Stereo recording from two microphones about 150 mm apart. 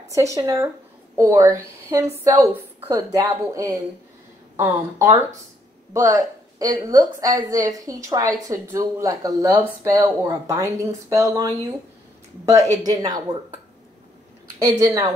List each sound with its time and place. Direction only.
0.1 s speech: 20° right (ahead or behind)
12.7 s speech: 25° right (ahead or behind)
14.8 s speech: 20° right (ahead or behind)